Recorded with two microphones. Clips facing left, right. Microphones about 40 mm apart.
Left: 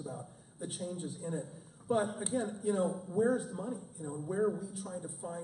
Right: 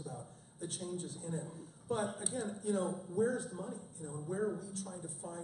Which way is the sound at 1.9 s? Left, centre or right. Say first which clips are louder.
Left 5 dB; left.